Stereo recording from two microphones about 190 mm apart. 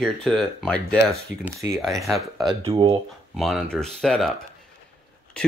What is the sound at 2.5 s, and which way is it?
Speech, 15° right (ahead or behind).